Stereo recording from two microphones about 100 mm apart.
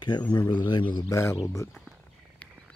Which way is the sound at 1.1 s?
30° left (ahead or behind).